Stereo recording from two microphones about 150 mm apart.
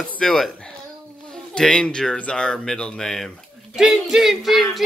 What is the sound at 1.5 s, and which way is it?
Speech, 5° left (ahead or behind).